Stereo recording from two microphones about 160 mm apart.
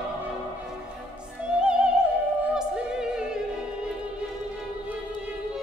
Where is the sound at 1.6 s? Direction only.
5° right (ahead or behind).